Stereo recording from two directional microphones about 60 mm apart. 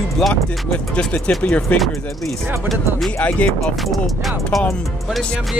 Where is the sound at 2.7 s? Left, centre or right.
Centre.